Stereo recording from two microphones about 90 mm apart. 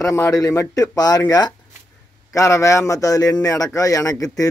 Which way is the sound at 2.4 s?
35° left (ahead or behind).